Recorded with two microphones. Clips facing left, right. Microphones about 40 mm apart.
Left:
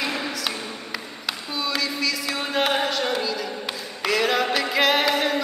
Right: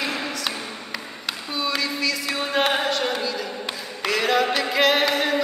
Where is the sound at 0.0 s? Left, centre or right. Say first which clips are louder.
Even; centre.